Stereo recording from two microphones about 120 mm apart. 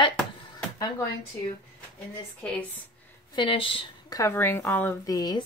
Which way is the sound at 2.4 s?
15° left (ahead or behind).